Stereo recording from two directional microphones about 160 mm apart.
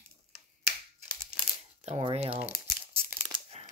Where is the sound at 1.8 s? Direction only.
40° right (ahead or behind).